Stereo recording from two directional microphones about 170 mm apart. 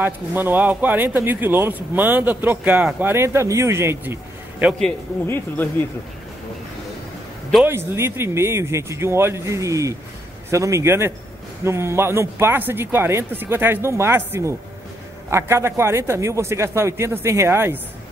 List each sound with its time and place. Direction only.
0.0 s speech: 10° right (ahead or behind)
4.7 s speech: 10° left (ahead or behind)
7.6 s speech: 15° right (ahead or behind)